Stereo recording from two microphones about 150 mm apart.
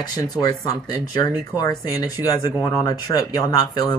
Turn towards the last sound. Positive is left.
turn(degrees=25)  # may be behind; listen again after turning